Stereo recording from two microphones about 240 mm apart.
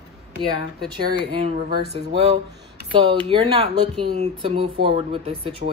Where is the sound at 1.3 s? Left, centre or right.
Right.